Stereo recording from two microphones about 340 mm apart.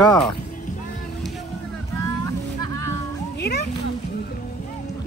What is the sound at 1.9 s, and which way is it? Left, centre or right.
Music, centre.